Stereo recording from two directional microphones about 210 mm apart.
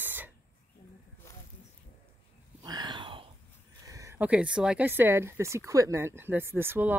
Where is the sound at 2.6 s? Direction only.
20° right (ahead or behind).